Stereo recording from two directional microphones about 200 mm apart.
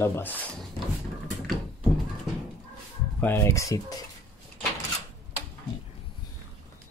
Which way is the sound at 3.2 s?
15° left (ahead or behind).